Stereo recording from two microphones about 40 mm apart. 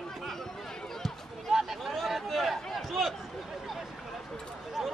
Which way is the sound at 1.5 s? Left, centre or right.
Centre.